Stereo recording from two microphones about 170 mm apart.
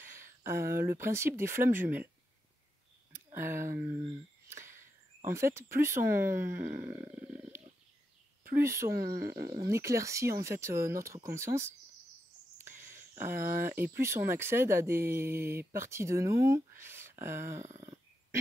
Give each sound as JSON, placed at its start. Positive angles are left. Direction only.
{"t": 0.0, "sound": "speech", "side_deg": -15}
{"t": 3.3, "sound": "speech", "side_deg": -15}
{"t": 4.5, "sound": "a sound", "side_deg": -15}
{"t": 5.3, "sound": "speech", "side_deg": -15}
{"t": 6.8, "sound": "a sound", "side_deg": -15}
{"t": 8.5, "sound": "speech", "side_deg": -15}
{"t": 12.8, "sound": "speech", "side_deg": -15}
{"t": 17.6, "sound": "dog", "side_deg": -45}